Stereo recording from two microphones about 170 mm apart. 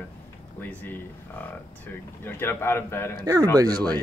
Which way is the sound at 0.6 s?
10° left (ahead or behind).